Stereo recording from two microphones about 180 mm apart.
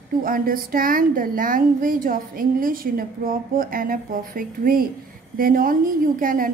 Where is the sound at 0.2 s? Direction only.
50° right (ahead or behind).